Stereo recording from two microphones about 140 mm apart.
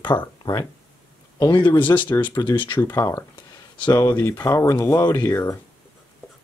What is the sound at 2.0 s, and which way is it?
Speech, 15° left (ahead or behind).